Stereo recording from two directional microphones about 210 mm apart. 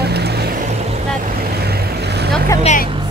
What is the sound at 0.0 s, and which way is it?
Vehicle, 50° right (ahead or behind).